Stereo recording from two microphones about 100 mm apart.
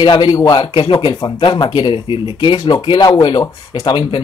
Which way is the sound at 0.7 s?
65° left (ahead or behind).